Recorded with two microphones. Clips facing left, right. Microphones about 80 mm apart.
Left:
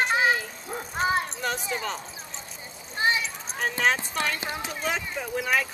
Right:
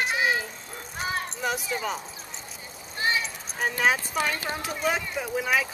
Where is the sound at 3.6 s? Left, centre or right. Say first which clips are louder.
Right 1 dB; centre.